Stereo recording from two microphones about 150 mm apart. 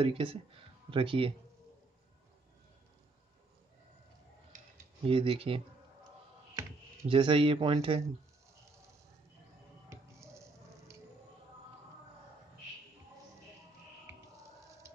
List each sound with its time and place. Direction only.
0.0 s speech: 35° right (ahead or behind)
5.0 s speech: 40° right (ahead or behind)
7.1 s speech: 35° right (ahead or behind)
9.8 s music: 20° right (ahead or behind)